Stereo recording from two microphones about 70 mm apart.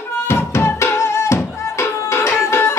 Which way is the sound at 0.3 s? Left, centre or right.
Left.